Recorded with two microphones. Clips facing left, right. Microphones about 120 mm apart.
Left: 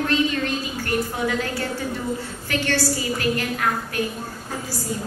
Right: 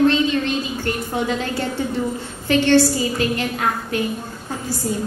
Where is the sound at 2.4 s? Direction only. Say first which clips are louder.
Right 10 dB; 25° right (ahead or behind).